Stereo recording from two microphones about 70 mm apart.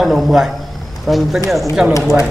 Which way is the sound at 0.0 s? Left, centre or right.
Centre.